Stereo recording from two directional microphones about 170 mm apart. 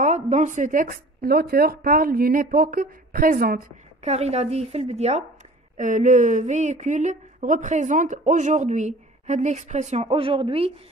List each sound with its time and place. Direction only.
0.0 s speech: 45° right (ahead or behind); by 3.6 s 60° right (ahead or behind)
4.0 s a woman's voice: 40° right (ahead or behind)